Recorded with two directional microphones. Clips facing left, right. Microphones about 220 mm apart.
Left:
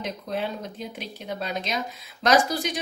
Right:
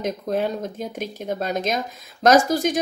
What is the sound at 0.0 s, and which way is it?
A woman's voice, 45° right (ahead or behind).